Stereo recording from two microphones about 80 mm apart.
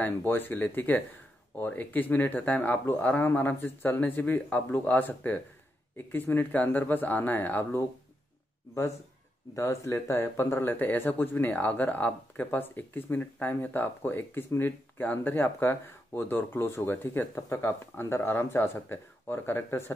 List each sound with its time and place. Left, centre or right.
0.0 s speech: left
9.6 s speech: left
17.2 s speech: left